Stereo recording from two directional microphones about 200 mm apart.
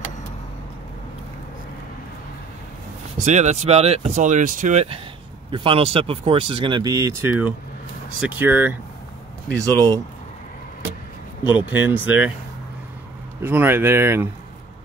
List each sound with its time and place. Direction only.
3.2 s speech: 35° right (ahead or behind); by 9.9 s 15° right (ahead or behind)
11.4 s speech: 10° right (ahead or behind)
13.4 s speech: 10° right (ahead or behind)